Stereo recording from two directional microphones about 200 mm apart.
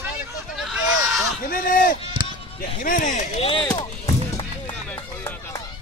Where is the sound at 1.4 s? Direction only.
45° left (ahead or behind).